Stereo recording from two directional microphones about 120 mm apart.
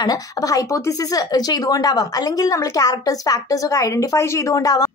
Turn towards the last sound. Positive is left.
turn(degrees=30)  # may be behind; listen again after turning